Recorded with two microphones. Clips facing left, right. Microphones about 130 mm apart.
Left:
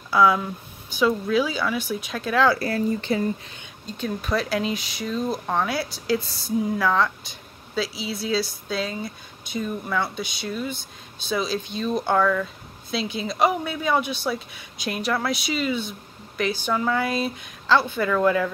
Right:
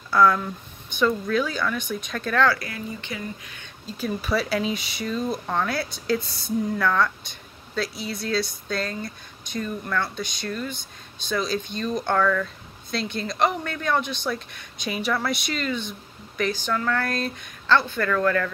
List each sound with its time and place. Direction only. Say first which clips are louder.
0.1 s speech: even; 5° left (ahead or behind)
2.6 s speech: left 10 dB; 35° left (ahead or behind)
3.8 s speech: even; 5° right (ahead or behind); by 18.5 s 10° left (ahead or behind)